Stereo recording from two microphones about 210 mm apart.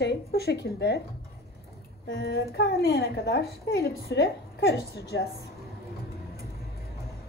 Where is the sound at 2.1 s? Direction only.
55° left (ahead or behind).